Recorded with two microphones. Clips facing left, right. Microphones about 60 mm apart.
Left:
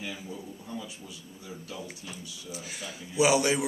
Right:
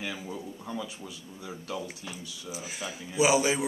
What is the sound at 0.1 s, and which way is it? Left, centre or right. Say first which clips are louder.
Speech: right 2 dB; right.